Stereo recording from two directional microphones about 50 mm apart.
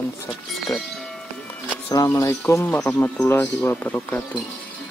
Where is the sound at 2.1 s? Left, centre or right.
Left.